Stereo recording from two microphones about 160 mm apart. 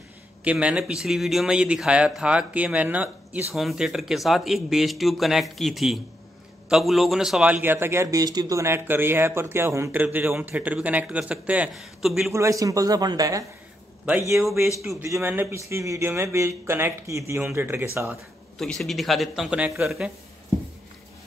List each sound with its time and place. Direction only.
0.4 s a man's voice: 10° right (ahead or behind)
12.3 s a man's voice: 20° right (ahead or behind)
14.3 s speech: centre (ahead or behind)
14.8 s a man's voice: 20° right (ahead or behind)
18.6 s speech: centre (ahead or behind)